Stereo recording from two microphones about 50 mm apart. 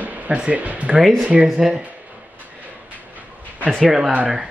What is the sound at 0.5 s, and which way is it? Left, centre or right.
Speech, right.